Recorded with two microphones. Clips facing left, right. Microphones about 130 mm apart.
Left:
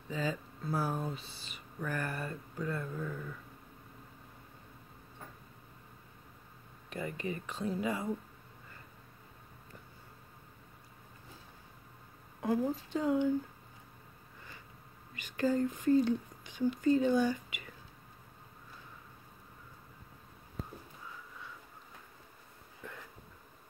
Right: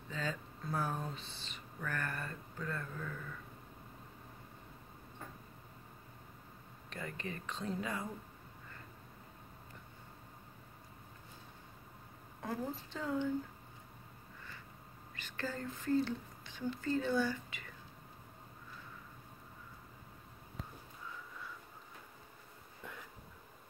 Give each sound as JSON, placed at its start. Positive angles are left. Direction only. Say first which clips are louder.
{"t": 0.1, "sound": "speech", "louder": "left 5 dB", "side_deg": 10}
{"t": 6.9, "sound": "speech", "louder": "left 6 dB", "side_deg": 10}
{"t": 12.4, "sound": "speech", "louder": "left 8 dB", "side_deg": 15}
{"t": 15.1, "sound": "speech", "louder": "left 11 dB", "side_deg": 15}